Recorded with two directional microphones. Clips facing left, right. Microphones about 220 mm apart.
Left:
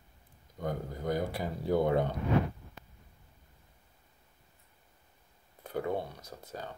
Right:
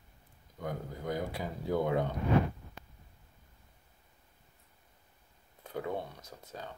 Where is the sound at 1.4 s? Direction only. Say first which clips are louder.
Left 2 dB; 15° left (ahead or behind).